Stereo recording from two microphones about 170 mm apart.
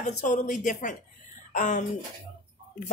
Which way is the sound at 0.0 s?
45° left (ahead or behind).